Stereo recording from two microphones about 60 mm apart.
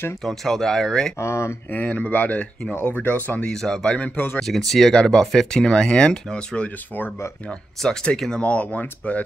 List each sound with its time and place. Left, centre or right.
0.2 s speech: centre
1.2 s speech: left
1.7 s speech: left
3.3 s speech: left
3.6 s speech: centre
4.4 s speech: centre
7.8 s speech: centre
8.4 s speech: left